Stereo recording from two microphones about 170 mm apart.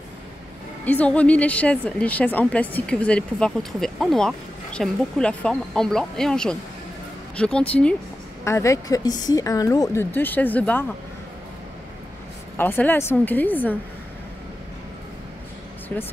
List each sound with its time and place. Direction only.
0.8 s a woman's voice: 10° left (ahead or behind)
12.5 s a woman's voice: 10° left (ahead or behind)
15.9 s a woman's voice: 10° left (ahead or behind)